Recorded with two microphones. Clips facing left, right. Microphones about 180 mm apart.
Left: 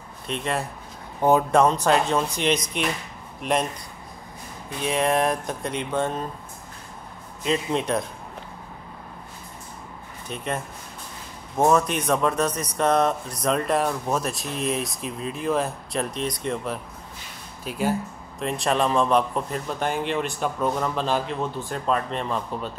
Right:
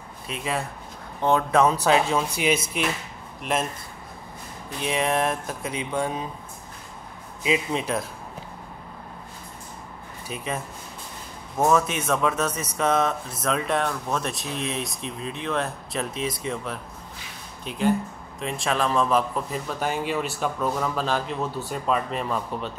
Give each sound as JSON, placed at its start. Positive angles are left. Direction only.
{"t": 0.3, "sound": "speech", "side_deg": -5}
{"t": 4.7, "sound": "speech", "side_deg": 0}
{"t": 7.4, "sound": "speech", "side_deg": -5}
{"t": 10.2, "sound": "speech", "side_deg": -5}
{"t": 11.7, "sound": "speech", "side_deg": 0}